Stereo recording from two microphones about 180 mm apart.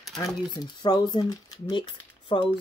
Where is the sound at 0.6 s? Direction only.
25° left (ahead or behind).